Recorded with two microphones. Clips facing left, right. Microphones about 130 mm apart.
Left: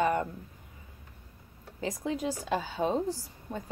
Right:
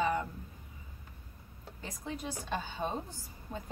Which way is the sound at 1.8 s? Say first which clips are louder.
Left 9 dB; 90° left.